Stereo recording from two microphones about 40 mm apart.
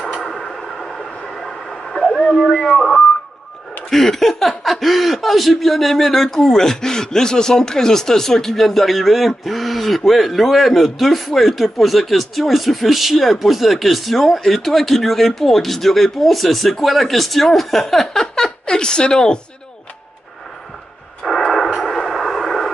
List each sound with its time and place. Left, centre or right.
0.1 s train: centre
2.3 s radio: centre
3.9 s speech: centre
18.0 s chuckle: centre
21.2 s radio: centre
21.7 s vehicle: centre